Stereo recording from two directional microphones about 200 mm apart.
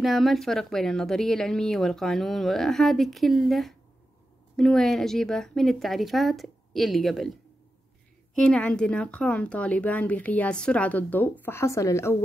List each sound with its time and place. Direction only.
0.0 s speech: centre (ahead or behind)
8.4 s speech: 5° left (ahead or behind)